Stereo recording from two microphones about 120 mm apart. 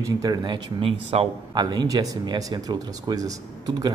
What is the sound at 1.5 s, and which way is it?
Speech, 35° right (ahead or behind).